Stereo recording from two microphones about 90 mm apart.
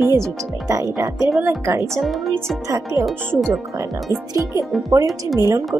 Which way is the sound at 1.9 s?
Centre (ahead or behind).